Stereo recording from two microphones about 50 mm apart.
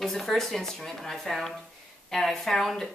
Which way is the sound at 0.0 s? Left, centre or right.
Centre.